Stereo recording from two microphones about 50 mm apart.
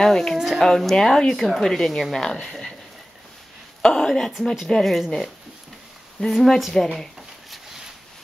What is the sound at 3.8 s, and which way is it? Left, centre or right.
A woman's voice, centre.